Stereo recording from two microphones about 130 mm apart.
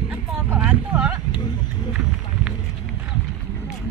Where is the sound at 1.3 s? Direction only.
35° left (ahead or behind).